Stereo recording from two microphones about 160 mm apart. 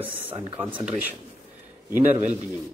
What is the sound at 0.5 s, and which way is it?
Speech, 30° right (ahead or behind).